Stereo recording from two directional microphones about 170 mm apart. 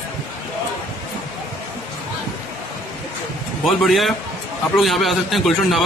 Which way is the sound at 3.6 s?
Centre (ahead or behind).